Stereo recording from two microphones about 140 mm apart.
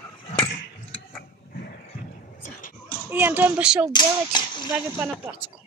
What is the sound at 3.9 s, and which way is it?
Speech, 30° left (ahead or behind).